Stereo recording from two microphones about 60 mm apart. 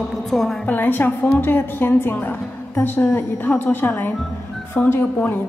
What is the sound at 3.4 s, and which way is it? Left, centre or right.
A woman's voice, left.